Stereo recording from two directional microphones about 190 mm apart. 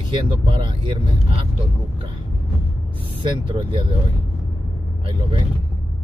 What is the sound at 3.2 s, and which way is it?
Speech, 25° right (ahead or behind).